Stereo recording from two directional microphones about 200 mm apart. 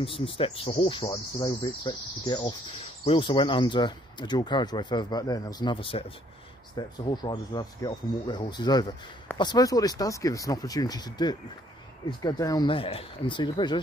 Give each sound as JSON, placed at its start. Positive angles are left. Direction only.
{"t": 0.0, "sound": "speech", "side_deg": 25}